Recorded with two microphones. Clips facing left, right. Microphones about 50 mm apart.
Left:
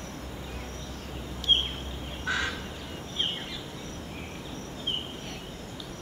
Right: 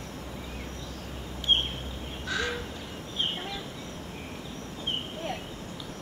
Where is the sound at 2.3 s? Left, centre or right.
Left.